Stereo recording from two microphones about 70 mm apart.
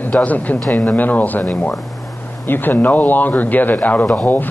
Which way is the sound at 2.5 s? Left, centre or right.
Left.